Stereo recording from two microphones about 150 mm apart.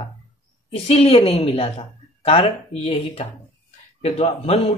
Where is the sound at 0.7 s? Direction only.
40° left (ahead or behind).